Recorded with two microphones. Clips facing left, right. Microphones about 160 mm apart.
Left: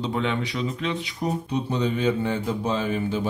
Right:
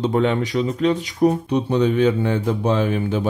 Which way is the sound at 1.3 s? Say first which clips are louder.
Right 7 dB; 65° right (ahead or behind).